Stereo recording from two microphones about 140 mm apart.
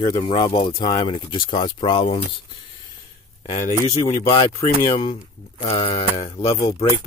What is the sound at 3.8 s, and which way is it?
Speech, 20° left (ahead or behind).